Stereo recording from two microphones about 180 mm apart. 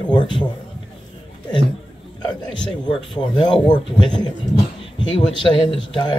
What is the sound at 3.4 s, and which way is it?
Speech, 25° left (ahead or behind).